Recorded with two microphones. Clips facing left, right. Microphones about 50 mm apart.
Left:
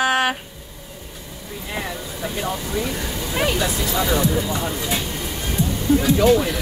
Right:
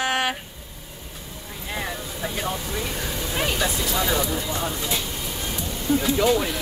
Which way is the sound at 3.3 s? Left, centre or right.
Centre.